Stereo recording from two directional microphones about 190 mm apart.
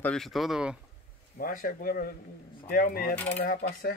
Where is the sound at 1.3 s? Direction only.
50° left (ahead or behind).